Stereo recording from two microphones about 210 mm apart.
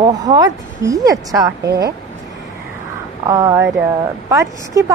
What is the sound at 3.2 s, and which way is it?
A woman's voice, 15° right (ahead or behind).